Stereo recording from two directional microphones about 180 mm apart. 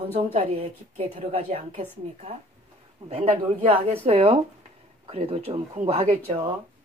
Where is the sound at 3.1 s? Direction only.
35° right (ahead or behind).